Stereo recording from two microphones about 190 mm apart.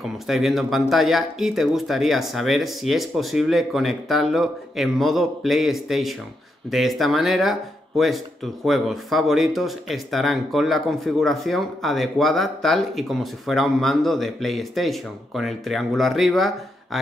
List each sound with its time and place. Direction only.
0.0 s speech: centre (ahead or behind)